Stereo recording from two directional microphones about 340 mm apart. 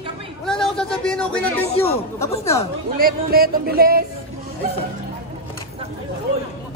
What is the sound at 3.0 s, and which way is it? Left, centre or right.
Music, right.